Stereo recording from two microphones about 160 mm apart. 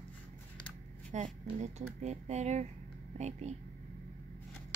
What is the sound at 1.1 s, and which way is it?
Speech, 45° right (ahead or behind).